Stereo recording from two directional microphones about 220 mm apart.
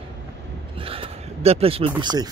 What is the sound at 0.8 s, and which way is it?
Speech, 25° right (ahead or behind).